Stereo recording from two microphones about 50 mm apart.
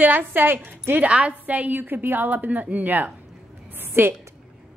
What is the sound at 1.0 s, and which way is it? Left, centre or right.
A woman's voice, right.